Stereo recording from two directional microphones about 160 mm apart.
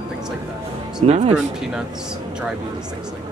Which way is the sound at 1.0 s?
40° right (ahead or behind).